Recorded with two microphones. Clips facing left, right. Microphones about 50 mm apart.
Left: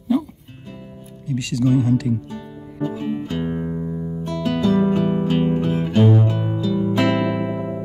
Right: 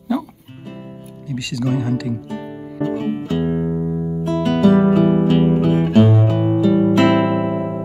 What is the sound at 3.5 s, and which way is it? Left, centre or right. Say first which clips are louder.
Music: right 5 dB; centre.